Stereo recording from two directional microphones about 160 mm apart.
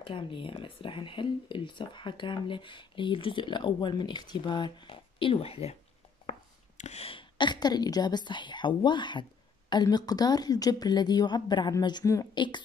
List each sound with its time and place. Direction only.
0.0 s speech: 35° left (ahead or behind)
6.8 s a woman's voice: 40° left (ahead or behind)